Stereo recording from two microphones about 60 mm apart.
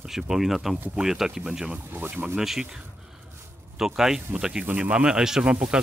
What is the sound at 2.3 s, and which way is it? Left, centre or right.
Speech, centre.